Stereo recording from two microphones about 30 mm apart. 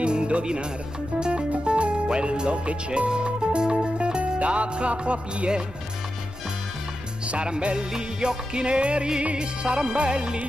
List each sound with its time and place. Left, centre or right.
0.0 s music: right
1.2 s speech: right
3.1 s music: right
7.2 s music: right